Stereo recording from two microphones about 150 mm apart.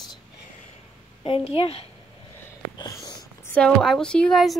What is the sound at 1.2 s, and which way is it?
Speech, 40° left (ahead or behind).